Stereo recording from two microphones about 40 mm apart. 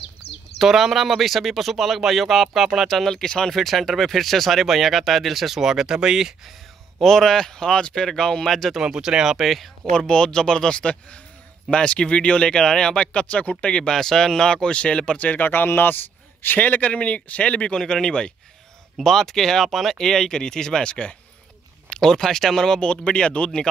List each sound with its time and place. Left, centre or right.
0.6 s speech: centre
3.1 s speech: centre
3.5 s speech: centre
7.0 s speech: centre
8.8 s speech: centre
9.9 s speech: centre
13.8 s speech: centre
15.1 s speech: left
16.4 s speech: left; by 18.3 s centre
19.0 s speech: centre; by 21.2 s left
22.0 s speech: centre